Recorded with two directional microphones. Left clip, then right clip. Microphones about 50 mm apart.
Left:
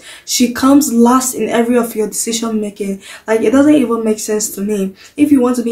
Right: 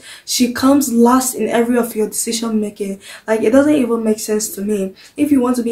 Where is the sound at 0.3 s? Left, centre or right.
Right.